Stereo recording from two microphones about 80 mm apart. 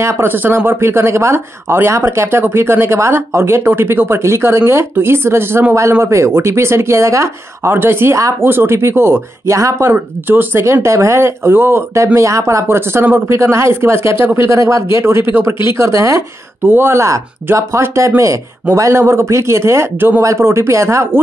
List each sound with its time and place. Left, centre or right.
0.0 s speech: right
7.7 s a woman's voice: right
9.6 s speech: right
9.8 s speech: right
16.6 s speech: right